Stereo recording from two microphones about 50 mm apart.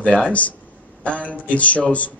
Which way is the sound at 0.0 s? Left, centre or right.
Left.